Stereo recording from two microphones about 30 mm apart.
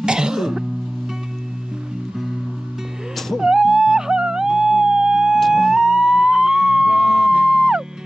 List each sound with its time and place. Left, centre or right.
0.0 s music: right
3.3 s music: centre